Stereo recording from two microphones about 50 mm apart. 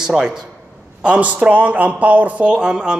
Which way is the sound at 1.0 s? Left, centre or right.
Right.